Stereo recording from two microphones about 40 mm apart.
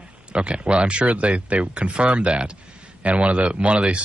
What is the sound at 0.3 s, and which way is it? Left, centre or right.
Speech, right.